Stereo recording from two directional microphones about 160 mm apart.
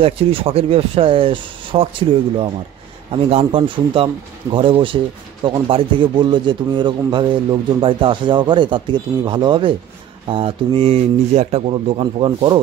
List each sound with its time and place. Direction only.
0.0 s speech: 35° right (ahead or behind)